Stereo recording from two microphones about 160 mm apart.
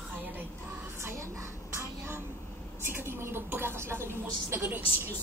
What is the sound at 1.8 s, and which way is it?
Vehicle, 15° right (ahead or behind).